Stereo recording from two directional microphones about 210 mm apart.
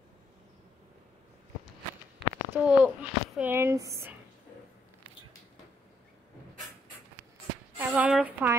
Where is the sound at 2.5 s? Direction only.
5° right (ahead or behind).